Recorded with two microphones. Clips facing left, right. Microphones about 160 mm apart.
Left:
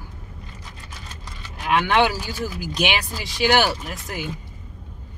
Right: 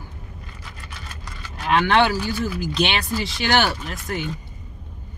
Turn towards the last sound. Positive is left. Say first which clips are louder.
# right 3 dB
turn(degrees=10)  # may be behind; listen again after turning